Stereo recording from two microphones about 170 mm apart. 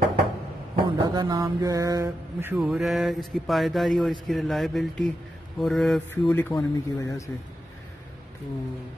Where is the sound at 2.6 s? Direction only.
Centre (ahead or behind).